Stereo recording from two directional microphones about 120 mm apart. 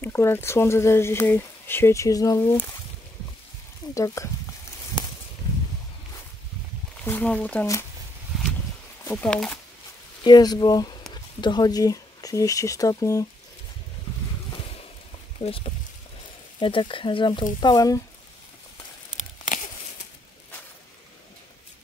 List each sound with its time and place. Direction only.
0.0 s speech: 20° left (ahead or behind)
3.9 s speech: 25° left (ahead or behind)
7.1 s speech: 10° left (ahead or behind)
8.3 s a sound: 5° right (ahead or behind)
9.1 s speech: 15° left (ahead or behind)
10.2 s speech: 35° left (ahead or behind)
15.4 s speech: 55° left (ahead or behind); by 18.0 s 30° left (ahead or behind)
19.1 s a sound: 90° left